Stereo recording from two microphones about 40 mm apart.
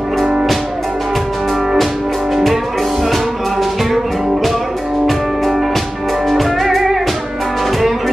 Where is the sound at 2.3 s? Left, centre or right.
Centre.